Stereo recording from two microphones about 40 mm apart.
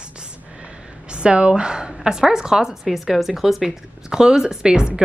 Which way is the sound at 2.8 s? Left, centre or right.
Centre.